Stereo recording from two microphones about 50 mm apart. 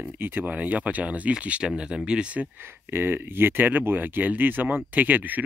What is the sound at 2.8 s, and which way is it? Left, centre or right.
Speech, right.